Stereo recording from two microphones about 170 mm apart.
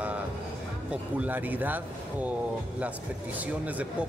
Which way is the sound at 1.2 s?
10° right (ahead or behind).